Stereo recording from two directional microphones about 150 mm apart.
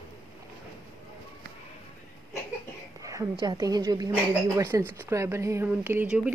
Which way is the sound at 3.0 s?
20° right (ahead or behind).